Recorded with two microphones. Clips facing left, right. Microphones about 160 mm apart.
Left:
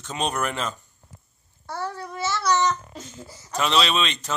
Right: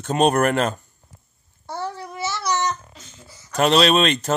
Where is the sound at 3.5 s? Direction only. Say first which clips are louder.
Right 6 dB; 50° right (ahead or behind).